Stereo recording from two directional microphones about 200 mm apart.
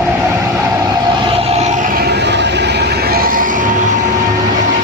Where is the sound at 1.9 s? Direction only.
60° right (ahead or behind); by 3.6 s 45° right (ahead or behind).